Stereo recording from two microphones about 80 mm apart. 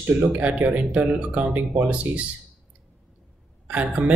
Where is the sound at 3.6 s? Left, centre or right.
Centre.